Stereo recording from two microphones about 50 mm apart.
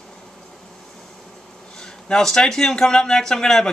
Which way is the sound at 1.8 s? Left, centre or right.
Centre.